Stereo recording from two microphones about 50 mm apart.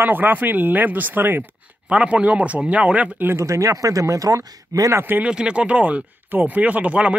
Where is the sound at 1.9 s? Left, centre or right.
Right.